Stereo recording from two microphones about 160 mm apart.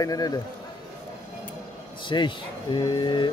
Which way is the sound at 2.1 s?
30° left (ahead or behind).